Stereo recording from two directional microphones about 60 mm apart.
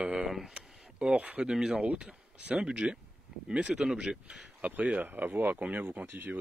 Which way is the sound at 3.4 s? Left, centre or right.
Centre.